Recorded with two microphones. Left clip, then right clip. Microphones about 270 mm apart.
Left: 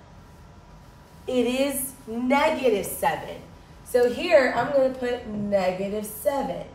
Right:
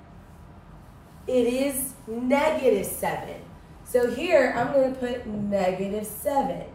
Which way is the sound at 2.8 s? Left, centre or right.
Centre.